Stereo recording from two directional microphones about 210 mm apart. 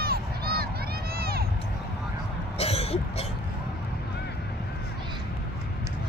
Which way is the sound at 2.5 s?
30° left (ahead or behind).